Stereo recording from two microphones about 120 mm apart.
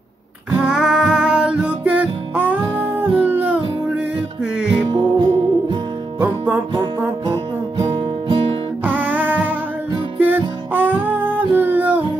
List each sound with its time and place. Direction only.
0.7 s music: 5° right (ahead or behind)
4.8 s music: 40° right (ahead or behind)
6.1 s music: 20° right (ahead or behind)
7.7 s music: 45° right (ahead or behind)
8.8 s music: 15° right (ahead or behind)